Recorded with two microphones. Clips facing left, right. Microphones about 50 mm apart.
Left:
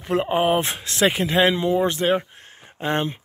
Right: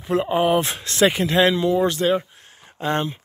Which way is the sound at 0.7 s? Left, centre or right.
Centre.